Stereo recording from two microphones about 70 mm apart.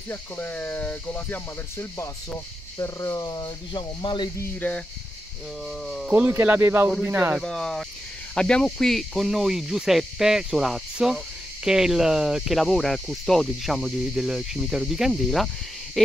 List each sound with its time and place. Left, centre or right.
0.1 s speech: left
1.8 s speech: left
3.2 s speech: left
4.6 s speech: left
6.0 s speech: centre
6.3 s speech: right
7.3 s speech: centre